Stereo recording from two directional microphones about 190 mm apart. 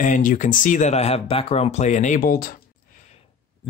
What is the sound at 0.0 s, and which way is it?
Speech, 45° left (ahead or behind).